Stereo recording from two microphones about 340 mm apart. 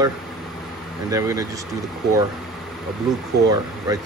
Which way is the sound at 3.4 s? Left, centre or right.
Right.